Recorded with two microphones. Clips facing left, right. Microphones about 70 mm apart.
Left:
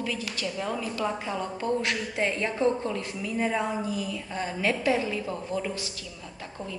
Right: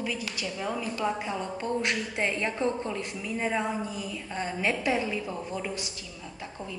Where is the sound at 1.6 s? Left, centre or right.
Right.